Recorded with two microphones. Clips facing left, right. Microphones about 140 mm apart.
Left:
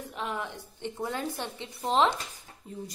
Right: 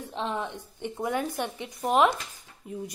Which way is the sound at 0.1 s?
25° right (ahead or behind).